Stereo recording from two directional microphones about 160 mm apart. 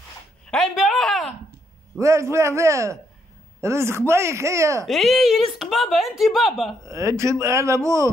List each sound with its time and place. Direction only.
0.5 s a sound: centre (ahead or behind)
2.0 s speech: 20° right (ahead or behind)
4.8 s speech: centre (ahead or behind)
6.8 s speech: 20° right (ahead or behind)